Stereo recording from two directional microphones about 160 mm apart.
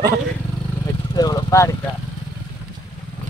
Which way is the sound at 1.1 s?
25° left (ahead or behind).